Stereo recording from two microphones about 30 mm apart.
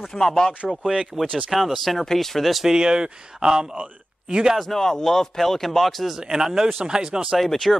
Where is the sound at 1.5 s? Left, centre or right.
Centre.